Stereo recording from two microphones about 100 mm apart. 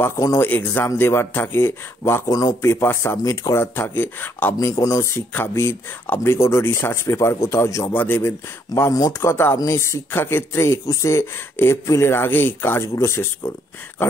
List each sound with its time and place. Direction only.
0.0 s speech: 30° left (ahead or behind)
2.3 s a man's voice: 40° left (ahead or behind)
2.7 s speech: 25° left (ahead or behind)
4.6 s speech: 35° left (ahead or behind)